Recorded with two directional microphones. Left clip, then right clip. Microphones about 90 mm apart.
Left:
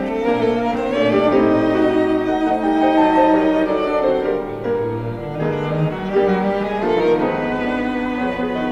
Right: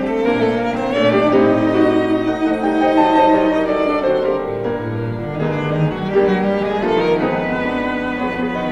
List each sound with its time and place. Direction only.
0.2 s music: 40° right (ahead or behind)
6.1 s cello: 35° right (ahead or behind)
6.9 s music: 40° right (ahead or behind)